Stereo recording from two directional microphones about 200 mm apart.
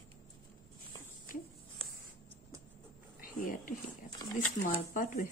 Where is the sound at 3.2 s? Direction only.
45° left (ahead or behind).